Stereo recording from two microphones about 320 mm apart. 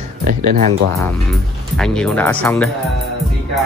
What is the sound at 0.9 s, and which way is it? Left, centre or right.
Speech, centre.